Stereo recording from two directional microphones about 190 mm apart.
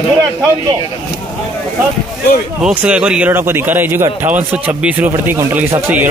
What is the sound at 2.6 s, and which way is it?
A man's voice, 5° right (ahead or behind).